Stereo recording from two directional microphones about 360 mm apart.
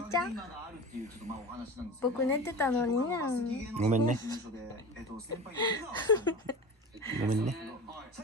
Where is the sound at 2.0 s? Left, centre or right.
Centre.